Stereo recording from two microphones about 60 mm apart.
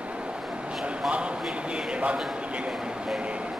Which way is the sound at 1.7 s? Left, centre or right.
Centre.